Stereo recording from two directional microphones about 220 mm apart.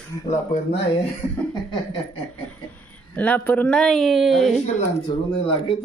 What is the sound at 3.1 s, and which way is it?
Speech, 5° left (ahead or behind).